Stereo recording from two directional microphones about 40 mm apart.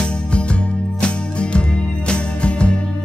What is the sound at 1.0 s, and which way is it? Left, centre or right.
Music, left.